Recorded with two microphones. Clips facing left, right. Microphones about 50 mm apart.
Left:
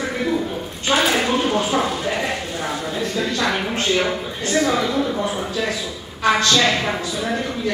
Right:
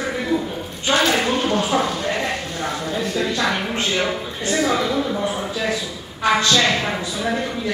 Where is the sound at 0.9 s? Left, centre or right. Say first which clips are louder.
Even; centre.